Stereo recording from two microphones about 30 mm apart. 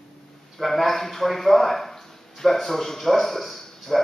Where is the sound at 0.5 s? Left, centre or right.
Centre.